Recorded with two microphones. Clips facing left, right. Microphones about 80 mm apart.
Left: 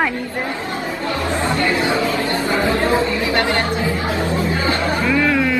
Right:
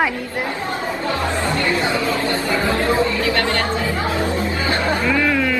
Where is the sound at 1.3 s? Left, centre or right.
Left.